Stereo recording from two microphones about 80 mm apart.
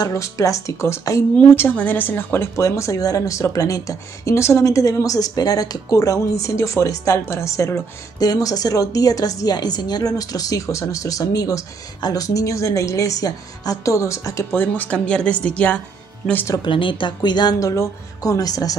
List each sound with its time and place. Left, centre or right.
0.1 s speech: left
1.5 s speech: left
8.2 s a woman's voice: left
14.5 s speech: left
14.9 s a woman's voice: centre
16.6 s speech: left
17.6 s a woman's voice: left